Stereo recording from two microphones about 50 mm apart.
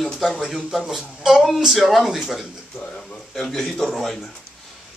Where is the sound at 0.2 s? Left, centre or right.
Centre.